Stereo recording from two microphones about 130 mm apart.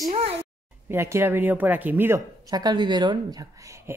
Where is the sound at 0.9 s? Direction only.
20° right (ahead or behind).